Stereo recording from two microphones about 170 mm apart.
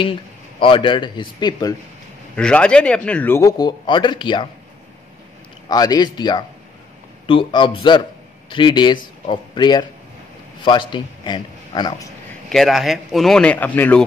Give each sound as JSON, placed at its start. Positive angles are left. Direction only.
{"t": 0.6, "sound": "speech", "side_deg": 30}
{"t": 2.3, "sound": "a man's voice", "side_deg": 5}
{"t": 5.7, "sound": "a man's voice", "side_deg": 20}
{"t": 12.4, "sound": "speech", "side_deg": 0}